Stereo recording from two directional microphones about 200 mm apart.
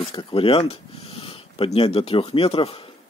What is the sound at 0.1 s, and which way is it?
Speech, 25° left (ahead or behind).